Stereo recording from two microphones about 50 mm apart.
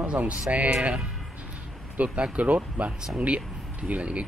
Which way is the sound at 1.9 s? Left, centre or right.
Right.